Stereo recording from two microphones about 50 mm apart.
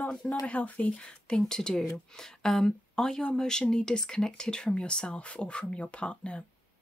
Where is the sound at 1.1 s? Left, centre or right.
Centre.